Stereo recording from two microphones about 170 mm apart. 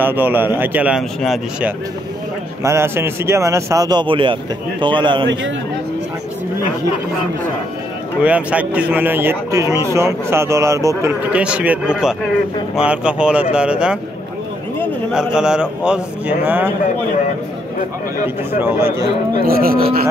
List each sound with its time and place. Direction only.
0.0 s a man's voice: 10° right (ahead or behind)
2.6 s a man's voice: 15° right (ahead or behind)
8.2 s a man's voice: 10° right (ahead or behind)
15.3 s a man's voice: 5° right (ahead or behind)
18.2 s a man's voice: 15° right (ahead or behind)
19.4 s speech: 60° right (ahead or behind)